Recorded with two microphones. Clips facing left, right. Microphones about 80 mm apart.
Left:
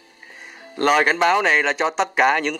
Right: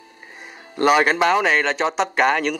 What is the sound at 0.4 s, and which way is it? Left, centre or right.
Speech, centre.